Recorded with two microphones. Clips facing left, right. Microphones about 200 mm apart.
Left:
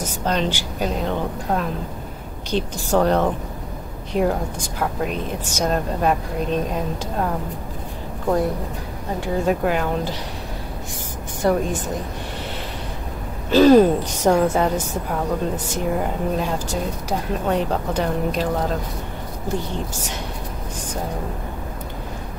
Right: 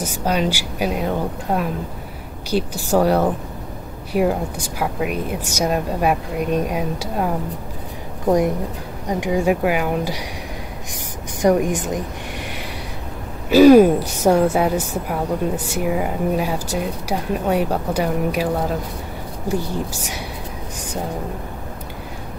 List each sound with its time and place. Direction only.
0.0 s a woman's voice: 10° right (ahead or behind)
9.2 s a woman's voice: 10° right (ahead or behind)
11.4 s a woman's voice: 15° right (ahead or behind)
13.5 s a woman's voice: 10° right (ahead or behind)